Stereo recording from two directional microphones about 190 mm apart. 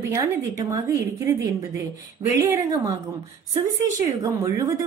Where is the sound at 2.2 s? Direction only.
25° right (ahead or behind).